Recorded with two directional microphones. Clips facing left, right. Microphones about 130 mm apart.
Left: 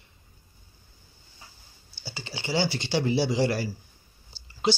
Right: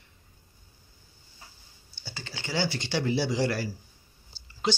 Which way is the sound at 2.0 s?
10° left (ahead or behind).